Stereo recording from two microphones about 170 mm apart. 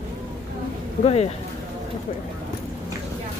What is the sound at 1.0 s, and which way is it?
Speech, 35° left (ahead or behind).